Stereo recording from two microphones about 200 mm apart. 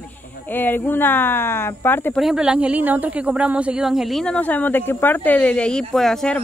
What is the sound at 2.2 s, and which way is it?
A woman's voice, 5° right (ahead or behind).